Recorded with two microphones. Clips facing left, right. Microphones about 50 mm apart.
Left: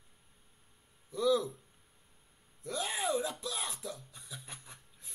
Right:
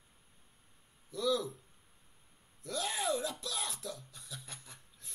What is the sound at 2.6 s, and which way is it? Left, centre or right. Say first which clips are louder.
Speech: left 1 dB; centre.